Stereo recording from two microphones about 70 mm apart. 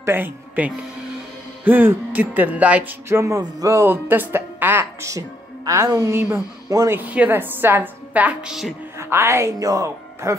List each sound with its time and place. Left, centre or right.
0.0 s speech: right
3.1 s music: right
3.3 s a woman's voice: right
3.8 s a woman's voice: right
5.7 s a woman's voice: right
7.1 s speech: right
8.1 s speech: centre
8.9 s a woman's voice: right
9.6 s speech: right